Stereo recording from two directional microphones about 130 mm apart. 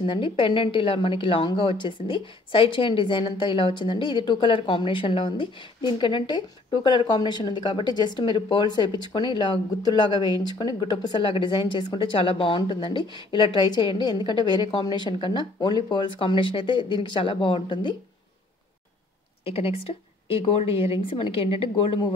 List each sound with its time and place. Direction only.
0.0 s a woman's voice: 40° left (ahead or behind)
19.4 s speech: 50° left (ahead or behind)